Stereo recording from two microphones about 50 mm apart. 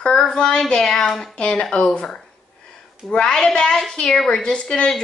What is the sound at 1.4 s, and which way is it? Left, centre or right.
Speech, centre.